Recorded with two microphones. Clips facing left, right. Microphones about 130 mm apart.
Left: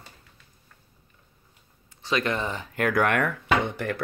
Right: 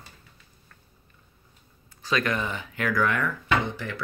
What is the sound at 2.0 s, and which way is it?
Speech, 25° left (ahead or behind).